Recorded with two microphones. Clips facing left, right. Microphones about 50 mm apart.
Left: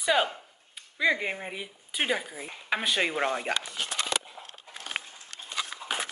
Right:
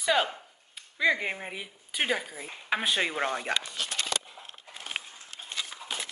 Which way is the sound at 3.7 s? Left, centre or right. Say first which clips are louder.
Left 1 dB; left.